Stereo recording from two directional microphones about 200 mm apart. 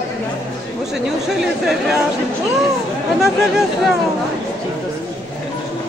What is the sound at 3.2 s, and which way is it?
Speech, centre (ahead or behind).